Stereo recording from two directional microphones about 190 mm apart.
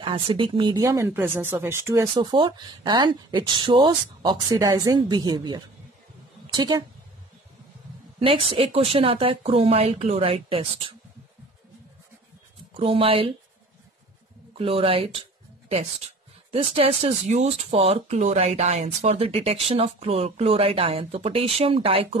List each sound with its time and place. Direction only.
0.0 s speech: 25° right (ahead or behind)
8.2 s speech: 25° right (ahead or behind)
12.7 s speech: 30° right (ahead or behind)
14.6 s speech: 30° right (ahead or behind)
16.5 s speech: 30° right (ahead or behind)